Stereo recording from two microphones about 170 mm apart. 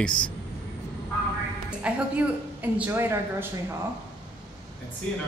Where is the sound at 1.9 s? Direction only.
5° right (ahead or behind).